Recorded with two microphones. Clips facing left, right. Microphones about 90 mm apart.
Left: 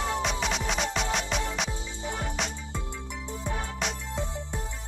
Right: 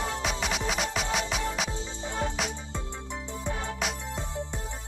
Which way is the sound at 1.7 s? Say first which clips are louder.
Even; 20° right (ahead or behind).